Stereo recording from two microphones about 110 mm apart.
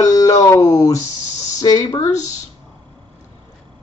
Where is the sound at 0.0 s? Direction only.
30° left (ahead or behind).